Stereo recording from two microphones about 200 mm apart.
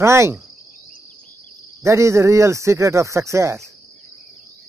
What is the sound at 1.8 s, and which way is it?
Speech, 15° right (ahead or behind).